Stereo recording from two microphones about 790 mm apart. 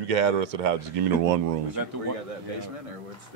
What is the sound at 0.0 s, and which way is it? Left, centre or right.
Speech, right.